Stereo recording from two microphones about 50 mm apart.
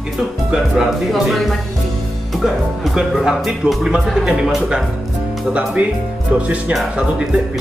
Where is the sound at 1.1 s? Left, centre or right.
Centre.